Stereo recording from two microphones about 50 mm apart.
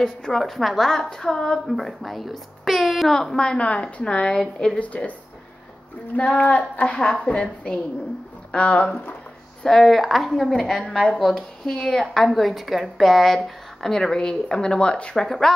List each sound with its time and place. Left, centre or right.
0.0 s speech: centre
0.4 s a woman's voice: centre
1.8 s a woman's voice: centre
3.2 s a woman's voice: centre
4.4 s speech: centre
4.7 s a woman's voice: left
6.1 s a woman's voice: left
9.6 s a woman's voice: centre
12.1 s a woman's voice: centre
15.1 s a woman's voice: centre